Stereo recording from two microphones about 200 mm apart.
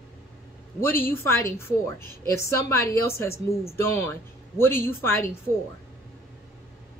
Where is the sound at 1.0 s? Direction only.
10° left (ahead or behind).